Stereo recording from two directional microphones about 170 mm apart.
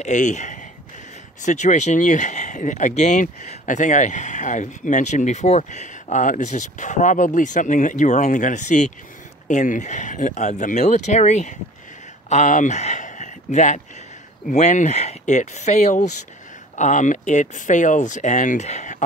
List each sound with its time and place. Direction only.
0.0 s speech: 45° left (ahead or behind)